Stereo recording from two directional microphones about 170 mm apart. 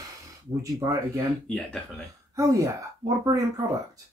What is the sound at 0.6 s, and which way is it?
Speech, 20° right (ahead or behind).